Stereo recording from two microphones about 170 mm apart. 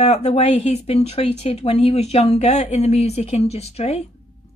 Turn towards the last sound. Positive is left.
turn(degrees=40)  # may be behind; listen again after turning